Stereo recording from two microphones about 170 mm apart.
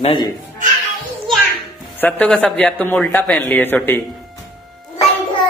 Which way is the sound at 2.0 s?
10° left (ahead or behind).